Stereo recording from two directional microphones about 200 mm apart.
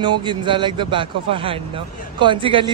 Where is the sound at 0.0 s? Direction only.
25° right (ahead or behind).